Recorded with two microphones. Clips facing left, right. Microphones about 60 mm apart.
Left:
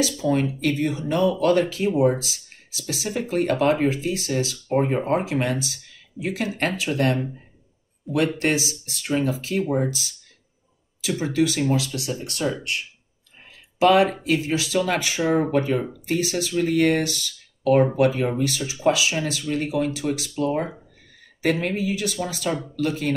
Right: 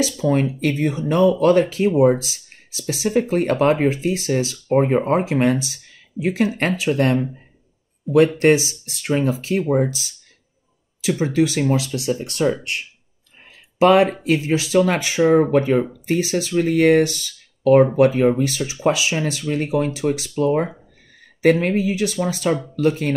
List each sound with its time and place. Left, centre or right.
0.0 s speech: right
8.1 s speech: centre
8.4 s speech: right
11.1 s speech: right
13.7 s speech: right